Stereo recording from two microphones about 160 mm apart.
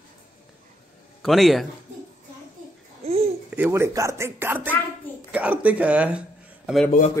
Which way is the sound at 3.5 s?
15° right (ahead or behind).